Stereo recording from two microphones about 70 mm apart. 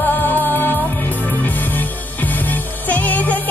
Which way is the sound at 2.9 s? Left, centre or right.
Left.